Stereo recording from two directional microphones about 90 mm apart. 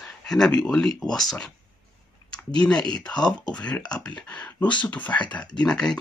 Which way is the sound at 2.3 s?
10° left (ahead or behind).